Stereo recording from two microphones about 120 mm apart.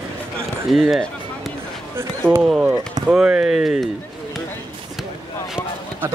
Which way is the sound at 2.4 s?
10° right (ahead or behind).